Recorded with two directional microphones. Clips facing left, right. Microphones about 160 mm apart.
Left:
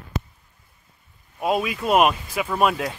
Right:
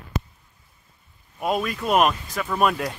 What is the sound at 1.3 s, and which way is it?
Speech, 5° left (ahead or behind).